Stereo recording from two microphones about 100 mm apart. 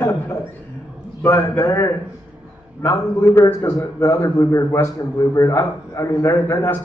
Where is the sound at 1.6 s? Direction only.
35° left (ahead or behind).